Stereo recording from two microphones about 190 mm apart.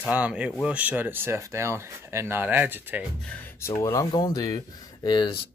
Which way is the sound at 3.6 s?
15° left (ahead or behind).